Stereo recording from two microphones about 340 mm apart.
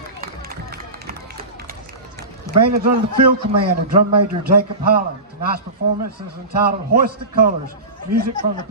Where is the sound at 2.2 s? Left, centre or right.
Right.